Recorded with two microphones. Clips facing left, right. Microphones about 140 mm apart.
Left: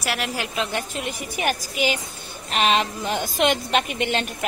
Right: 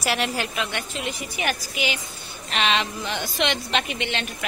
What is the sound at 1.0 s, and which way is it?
A woman's voice, 45° left (ahead or behind).